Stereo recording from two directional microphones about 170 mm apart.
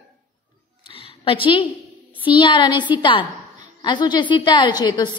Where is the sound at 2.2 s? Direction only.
30° left (ahead or behind).